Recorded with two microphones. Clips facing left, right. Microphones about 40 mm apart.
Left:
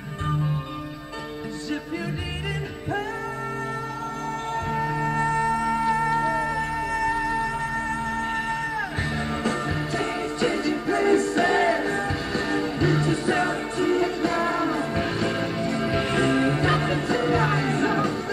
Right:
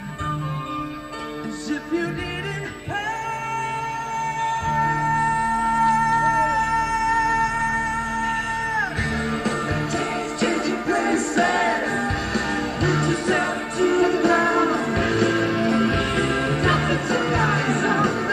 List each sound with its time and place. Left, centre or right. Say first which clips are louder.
4.5 s music: right 4 dB; right
5.8 s music: right 4 dB; centre
6.3 s music: right 6 dB; right
12.9 s music: right 2 dB; right
13.3 s music: right 1 dB; right
14.1 s music: right 6 dB; right
15.8 s music: right 2 dB; right